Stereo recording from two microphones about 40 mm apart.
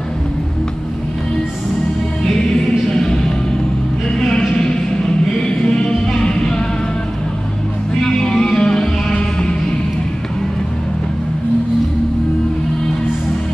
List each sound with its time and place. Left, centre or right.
3.0 s music: centre
4.2 s a sound: centre
5.6 s music: centre
8.0 s music: centre